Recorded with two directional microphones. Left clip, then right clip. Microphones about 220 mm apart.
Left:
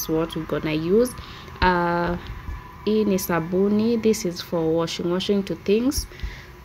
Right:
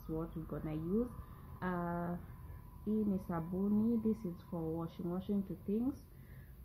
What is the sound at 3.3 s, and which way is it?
Speech, 20° left (ahead or behind).